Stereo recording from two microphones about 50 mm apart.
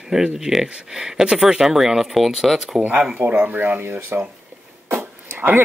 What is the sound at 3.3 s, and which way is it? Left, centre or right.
Speech, right.